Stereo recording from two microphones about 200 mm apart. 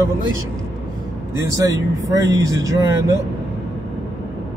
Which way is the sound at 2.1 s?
15° right (ahead or behind).